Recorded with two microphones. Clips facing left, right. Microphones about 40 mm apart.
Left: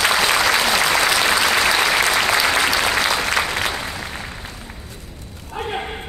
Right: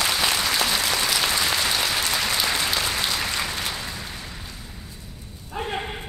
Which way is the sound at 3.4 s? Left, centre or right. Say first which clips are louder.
Left 7 dB; left.